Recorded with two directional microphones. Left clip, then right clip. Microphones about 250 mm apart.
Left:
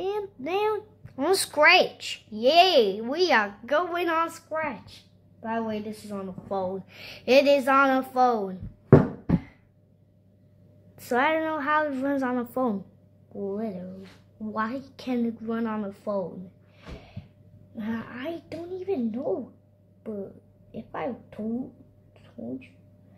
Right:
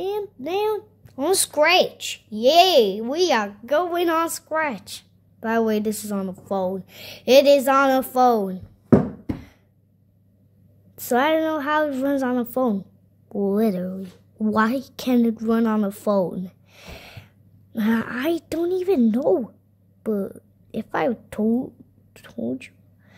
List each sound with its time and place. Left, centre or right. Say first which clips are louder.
0.0 s a child's voice: right 3 dB; centre
11.1 s a child's voice: right 4 dB; right
13.4 s a woman's voice: right 10 dB; right
17.7 s a woman's voice: right 11 dB; right
20.7 s a woman's voice: right 10 dB; right
22.1 s a sound: right 9 dB; right